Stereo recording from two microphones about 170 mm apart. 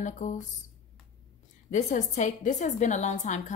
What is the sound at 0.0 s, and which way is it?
Speech, 45° left (ahead or behind).